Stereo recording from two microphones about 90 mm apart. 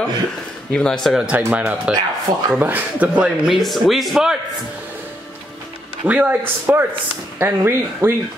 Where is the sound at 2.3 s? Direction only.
65° right (ahead or behind).